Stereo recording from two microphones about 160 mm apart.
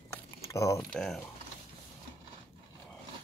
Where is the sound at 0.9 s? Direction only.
5° left (ahead or behind).